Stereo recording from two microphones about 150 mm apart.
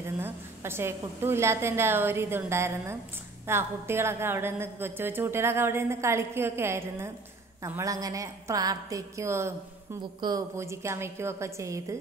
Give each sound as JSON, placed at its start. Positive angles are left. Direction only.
{"t": 0.0, "sound": "a woman's voice", "side_deg": -15}